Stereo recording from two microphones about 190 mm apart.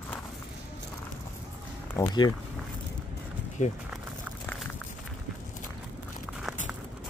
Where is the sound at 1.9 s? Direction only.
20° left (ahead or behind).